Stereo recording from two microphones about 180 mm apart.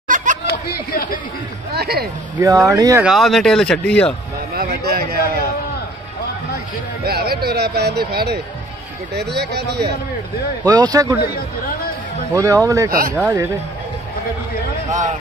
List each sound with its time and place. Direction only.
0.1 s chatter: 45° right (ahead or behind)
0.7 s speech: 55° left (ahead or behind)
1.7 s speech: 60° right (ahead or behind)
2.3 s speech: 20° right (ahead or behind)
3.0 s speech: centre (ahead or behind)
4.6 s a sound: 60° right (ahead or behind)
7.1 s speech: 60° right (ahead or behind)
10.7 s speech: 20° right (ahead or behind)
12.4 s speech: 20° right (ahead or behind)
14.9 s speech: 45° right (ahead or behind)